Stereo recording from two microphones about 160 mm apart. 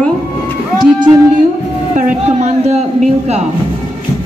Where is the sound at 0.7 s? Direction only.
30° right (ahead or behind).